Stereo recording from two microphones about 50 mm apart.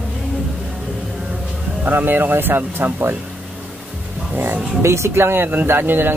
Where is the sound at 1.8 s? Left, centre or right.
Right.